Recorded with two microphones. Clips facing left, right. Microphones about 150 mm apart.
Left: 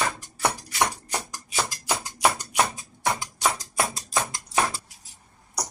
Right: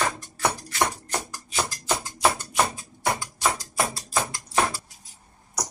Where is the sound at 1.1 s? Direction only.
15° left (ahead or behind).